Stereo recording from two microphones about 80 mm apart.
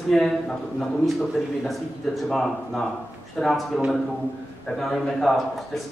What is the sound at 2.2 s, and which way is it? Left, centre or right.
Speech, centre.